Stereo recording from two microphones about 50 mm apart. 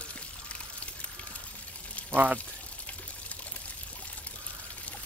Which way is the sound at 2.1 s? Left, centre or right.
Right.